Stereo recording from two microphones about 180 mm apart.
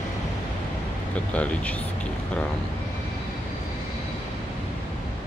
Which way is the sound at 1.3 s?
10° left (ahead or behind).